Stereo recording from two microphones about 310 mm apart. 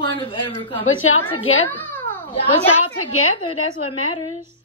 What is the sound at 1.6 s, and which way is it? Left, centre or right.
Cat, centre.